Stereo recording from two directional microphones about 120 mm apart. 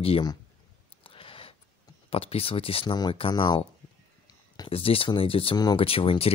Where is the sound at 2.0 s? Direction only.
55° left (ahead or behind).